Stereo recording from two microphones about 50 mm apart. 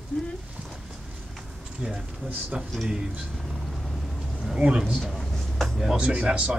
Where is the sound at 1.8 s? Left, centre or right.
Centre.